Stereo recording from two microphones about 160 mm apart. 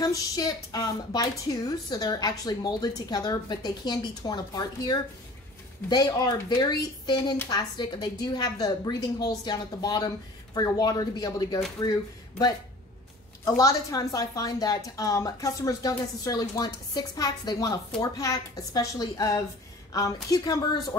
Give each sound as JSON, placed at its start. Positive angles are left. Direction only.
{"t": 0.0, "sound": "a woman's voice", "side_deg": 20}
{"t": 5.9, "sound": "a woman's voice", "side_deg": 25}
{"t": 13.6, "sound": "a woman's voice", "side_deg": 20}